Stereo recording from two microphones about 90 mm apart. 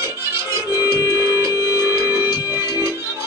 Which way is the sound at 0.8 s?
40° left (ahead or behind).